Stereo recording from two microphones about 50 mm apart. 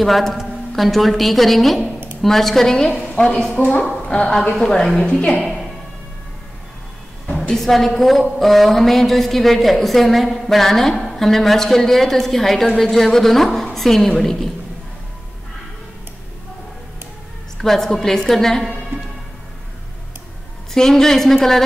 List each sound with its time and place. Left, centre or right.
0.0 s a woman's voice: centre
3.2 s a woman's voice: left
4.1 s a woman's voice: centre
5.0 s a woman's voice: left
7.3 s a woman's voice: centre
17.6 s a woman's voice: centre
18.9 s music: right
20.7 s a woman's voice: centre